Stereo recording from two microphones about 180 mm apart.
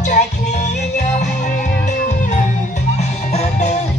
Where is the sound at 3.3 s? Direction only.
35° left (ahead or behind).